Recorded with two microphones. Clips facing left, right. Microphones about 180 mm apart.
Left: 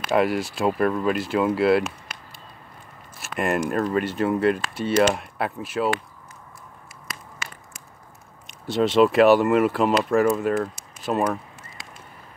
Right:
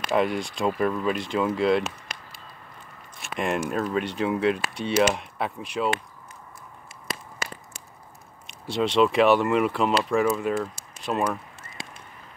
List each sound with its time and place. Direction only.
0.0 s speech: 5° left (ahead or behind)
3.2 s biting: 5° left (ahead or behind)
3.6 s speech: centre (ahead or behind)
7.1 s a sound: 30° right (ahead or behind)
8.5 s speech: centre (ahead or behind)
11.8 s a sound: 25° right (ahead or behind)